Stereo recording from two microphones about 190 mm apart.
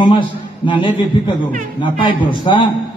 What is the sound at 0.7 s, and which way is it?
A man's voice, 25° left (ahead or behind).